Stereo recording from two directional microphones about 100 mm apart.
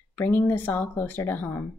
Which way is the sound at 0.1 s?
20° left (ahead or behind).